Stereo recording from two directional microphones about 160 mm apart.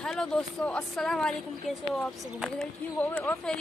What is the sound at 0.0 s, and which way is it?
Speech, 5° left (ahead or behind).